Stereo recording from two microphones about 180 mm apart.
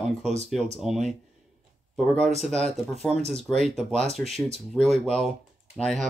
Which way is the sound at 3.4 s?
Centre (ahead or behind).